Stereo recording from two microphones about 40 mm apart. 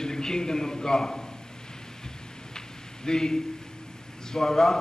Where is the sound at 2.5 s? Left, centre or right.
Centre.